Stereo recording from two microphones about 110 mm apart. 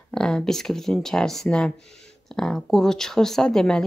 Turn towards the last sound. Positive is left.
turn(degrees=5)  # may be behind; listen again after turning